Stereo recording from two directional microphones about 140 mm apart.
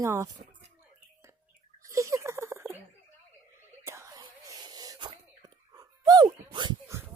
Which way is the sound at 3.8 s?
20° right (ahead or behind).